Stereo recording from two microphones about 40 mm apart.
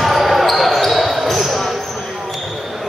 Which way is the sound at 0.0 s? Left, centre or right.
Centre.